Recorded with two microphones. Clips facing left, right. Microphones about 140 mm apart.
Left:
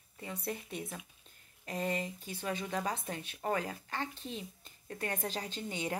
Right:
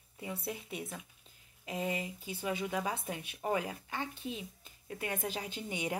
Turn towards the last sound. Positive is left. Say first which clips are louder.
# even
turn(degrees=-10)  # may be behind; listen again after turning